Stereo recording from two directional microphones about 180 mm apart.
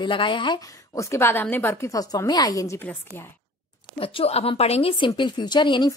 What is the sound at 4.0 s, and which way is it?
A woman's voice, 30° left (ahead or behind).